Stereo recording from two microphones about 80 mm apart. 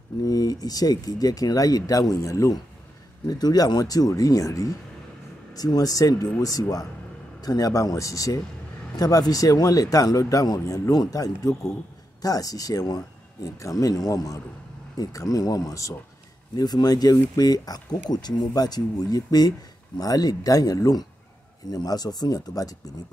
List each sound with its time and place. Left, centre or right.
0.2 s speech: left
3.3 s speech: left
16.5 s speech: left